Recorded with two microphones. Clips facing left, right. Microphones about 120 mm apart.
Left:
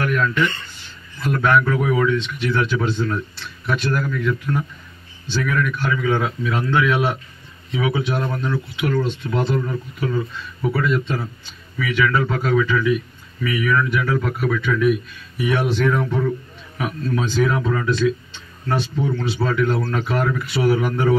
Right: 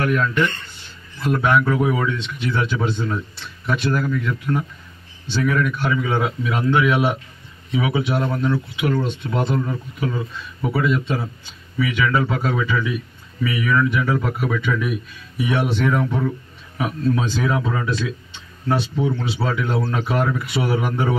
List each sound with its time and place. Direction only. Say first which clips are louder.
1.2 s speech: even; 15° right (ahead or behind)